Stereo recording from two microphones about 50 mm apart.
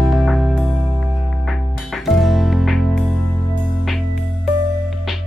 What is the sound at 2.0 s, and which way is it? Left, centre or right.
Music, centre.